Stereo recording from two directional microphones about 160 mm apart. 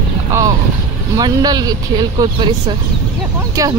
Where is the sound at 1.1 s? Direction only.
25° right (ahead or behind).